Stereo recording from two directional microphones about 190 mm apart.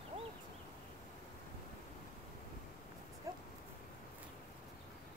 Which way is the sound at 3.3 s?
20° right (ahead or behind).